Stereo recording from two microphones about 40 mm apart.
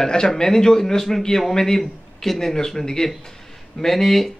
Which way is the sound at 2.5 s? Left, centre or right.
Centre.